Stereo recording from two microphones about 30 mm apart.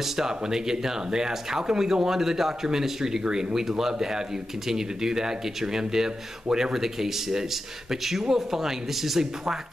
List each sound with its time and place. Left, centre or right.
0.0 s speech: centre